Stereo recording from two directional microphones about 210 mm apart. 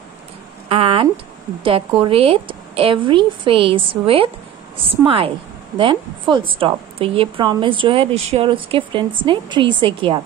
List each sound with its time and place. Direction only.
0.7 s a woman's voice: 25° right (ahead or behind)